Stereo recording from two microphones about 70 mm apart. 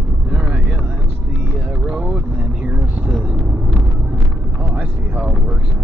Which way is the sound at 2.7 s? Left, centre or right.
Right.